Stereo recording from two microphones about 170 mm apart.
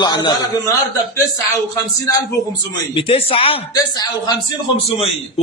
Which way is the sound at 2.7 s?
30° left (ahead or behind).